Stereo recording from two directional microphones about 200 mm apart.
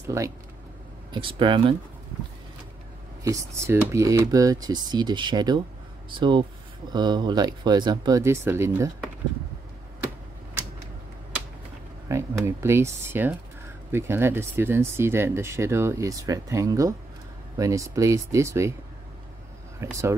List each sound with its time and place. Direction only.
0.0 s speech: 15° right (ahead or behind)
1.1 s speech: 25° right (ahead or behind)
3.3 s speech: 15° right (ahead or behind)
12.1 s speech: 15° right (ahead or behind)
19.8 s speech: 15° right (ahead or behind)